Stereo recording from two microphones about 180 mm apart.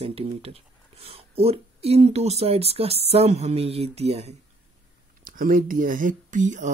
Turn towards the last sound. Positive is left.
turn(degrees=-45)  # may be behind; listen again after turning